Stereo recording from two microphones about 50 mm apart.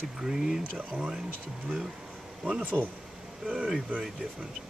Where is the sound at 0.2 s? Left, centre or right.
Centre.